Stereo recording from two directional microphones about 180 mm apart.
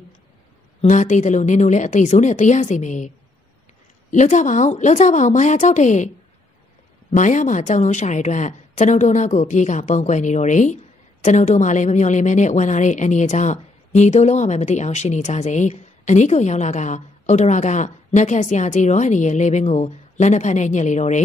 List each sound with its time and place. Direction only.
0.7 s speech: 45° left (ahead or behind)
4.1 s speech: 45° left (ahead or behind)
7.1 s speech: 45° left (ahead or behind)